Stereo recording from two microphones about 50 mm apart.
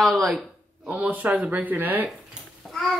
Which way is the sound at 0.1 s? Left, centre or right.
Centre.